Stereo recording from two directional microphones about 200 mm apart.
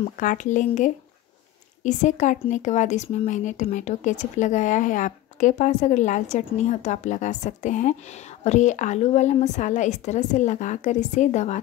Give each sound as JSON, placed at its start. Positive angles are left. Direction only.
{"t": 0.2, "sound": "speech", "side_deg": 40}